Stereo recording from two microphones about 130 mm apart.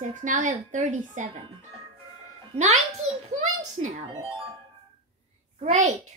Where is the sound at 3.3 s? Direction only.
80° right.